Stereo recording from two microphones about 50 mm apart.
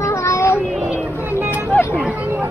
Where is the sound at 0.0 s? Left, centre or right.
Left.